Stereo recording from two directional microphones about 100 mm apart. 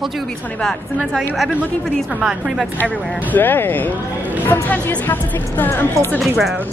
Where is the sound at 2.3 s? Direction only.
10° right (ahead or behind).